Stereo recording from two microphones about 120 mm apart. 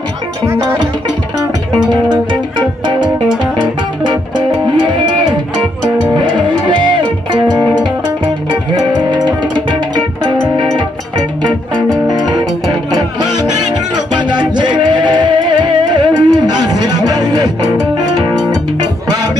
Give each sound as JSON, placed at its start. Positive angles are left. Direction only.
{"t": 3.5, "sound": "music", "side_deg": -40}
{"t": 12.1, "sound": "music", "side_deg": -35}